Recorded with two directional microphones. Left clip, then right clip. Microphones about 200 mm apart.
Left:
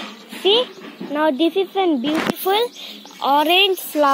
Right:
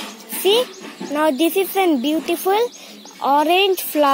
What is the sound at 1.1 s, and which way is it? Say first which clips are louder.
Speech: even; 10° right (ahead or behind).